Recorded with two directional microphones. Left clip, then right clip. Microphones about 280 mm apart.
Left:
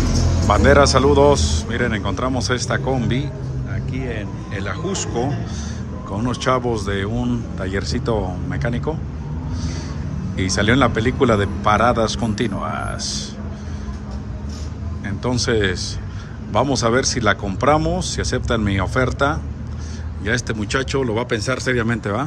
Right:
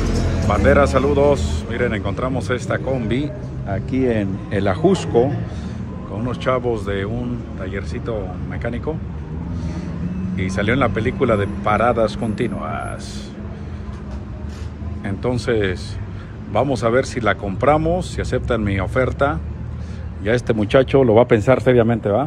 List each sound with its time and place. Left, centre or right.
0.5 s a man's voice: centre
3.7 s speech: centre
6.1 s a man's voice: centre
10.3 s a man's voice: centre
15.0 s a man's voice: centre